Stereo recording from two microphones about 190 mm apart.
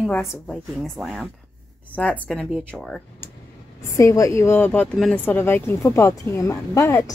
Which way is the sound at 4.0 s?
15° left (ahead or behind).